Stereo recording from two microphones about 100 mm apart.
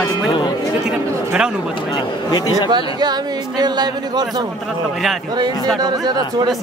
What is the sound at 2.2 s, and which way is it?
Speech, 40° left (ahead or behind).